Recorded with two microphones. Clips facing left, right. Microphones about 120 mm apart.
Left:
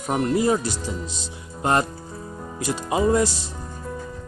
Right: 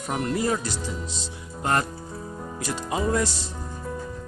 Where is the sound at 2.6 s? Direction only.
10° left (ahead or behind).